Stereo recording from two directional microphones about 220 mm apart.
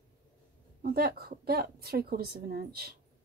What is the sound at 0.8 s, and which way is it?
Speech, 45° right (ahead or behind).